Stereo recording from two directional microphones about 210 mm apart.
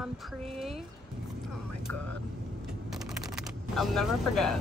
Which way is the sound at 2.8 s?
Centre (ahead or behind).